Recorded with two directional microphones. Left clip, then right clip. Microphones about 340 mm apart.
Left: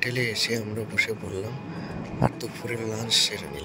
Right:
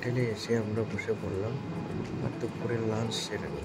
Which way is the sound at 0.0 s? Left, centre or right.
Left.